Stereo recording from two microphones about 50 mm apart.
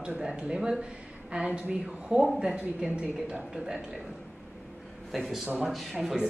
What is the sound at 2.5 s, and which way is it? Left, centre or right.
A woman's voice, right.